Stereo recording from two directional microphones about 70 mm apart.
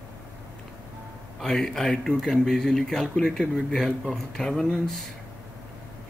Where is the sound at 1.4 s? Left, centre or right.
Centre.